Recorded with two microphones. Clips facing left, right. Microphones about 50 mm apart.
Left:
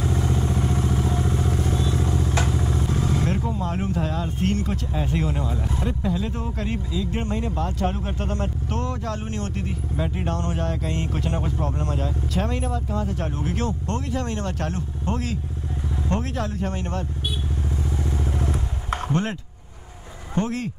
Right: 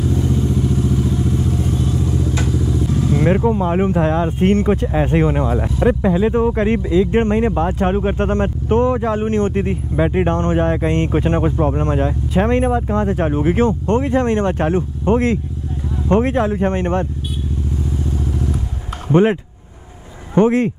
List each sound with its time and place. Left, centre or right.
0.0 s vehicle: left
3.3 s speech: right
6.8 s speech: right
7.8 s speech: right
8.7 s speech: right
10.2 s speech: right
10.9 s speech: right
13.3 s speech: right
14.0 s speech: right
14.4 s speech: right
18.1 s vehicle: left
20.3 s speech: right